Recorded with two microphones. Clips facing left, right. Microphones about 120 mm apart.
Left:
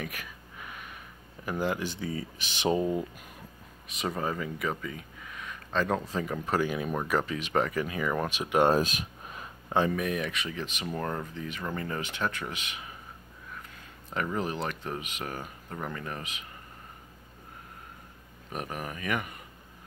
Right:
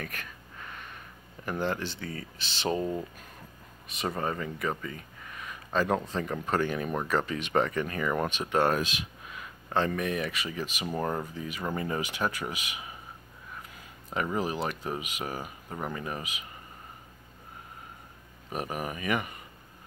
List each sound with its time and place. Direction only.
0.0 s a sound: 10° left (ahead or behind)
1.4 s speech: 5° left (ahead or behind)
3.9 s speech: centre (ahead or behind)
8.8 s a sound: 45° left (ahead or behind)
9.7 s speech: 15° left (ahead or behind)
9.9 s speech: centre (ahead or behind)
14.1 s speech: 5° right (ahead or behind)
18.5 s speech: 5° right (ahead or behind)